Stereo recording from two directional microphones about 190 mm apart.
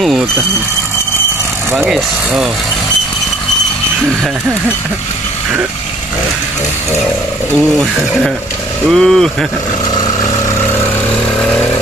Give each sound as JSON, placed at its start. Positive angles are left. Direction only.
{"t": 1.9, "sound": "speech", "side_deg": 0}
{"t": 7.5, "sound": "speech", "side_deg": 0}
{"t": 9.8, "sound": "vehicle", "side_deg": 20}